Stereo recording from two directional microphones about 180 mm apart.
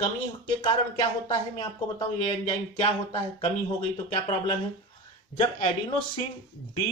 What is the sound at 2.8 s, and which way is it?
Speech, 30° left (ahead or behind).